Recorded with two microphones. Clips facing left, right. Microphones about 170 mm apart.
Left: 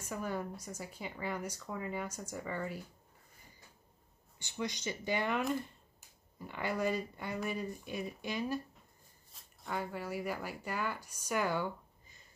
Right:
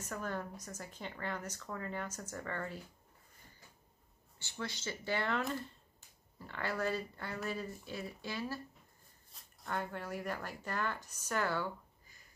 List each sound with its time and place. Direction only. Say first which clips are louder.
0.0 s a woman's voice: left 2 dB; 10° left (ahead or behind)
4.4 s a woman's voice: left 4 dB; 15° left (ahead or behind)
9.3 s speech: even; centre (ahead or behind); by 12.2 s 15° left (ahead or behind)